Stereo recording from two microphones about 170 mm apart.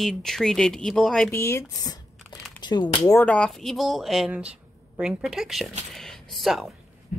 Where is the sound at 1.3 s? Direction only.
15° left (ahead or behind).